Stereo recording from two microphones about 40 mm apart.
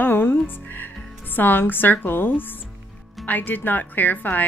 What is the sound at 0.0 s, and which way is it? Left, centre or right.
Music, left.